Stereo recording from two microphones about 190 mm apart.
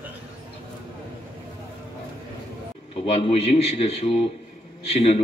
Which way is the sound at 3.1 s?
30° left (ahead or behind).